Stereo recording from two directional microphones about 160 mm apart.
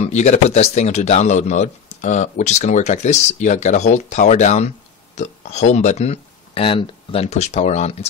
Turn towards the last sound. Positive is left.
turn(degrees=45)  # may be behind; listen again after turning